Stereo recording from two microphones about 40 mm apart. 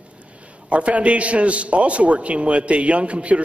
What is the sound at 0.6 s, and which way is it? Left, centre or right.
A man's voice, right.